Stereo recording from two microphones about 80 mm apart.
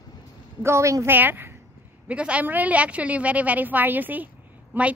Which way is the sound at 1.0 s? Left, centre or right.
Right.